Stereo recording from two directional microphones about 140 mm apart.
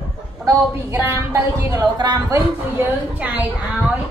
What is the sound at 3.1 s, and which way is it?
Speech, 10° right (ahead or behind).